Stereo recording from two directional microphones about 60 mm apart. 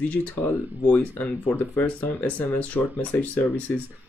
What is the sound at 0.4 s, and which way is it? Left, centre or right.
Speech, left.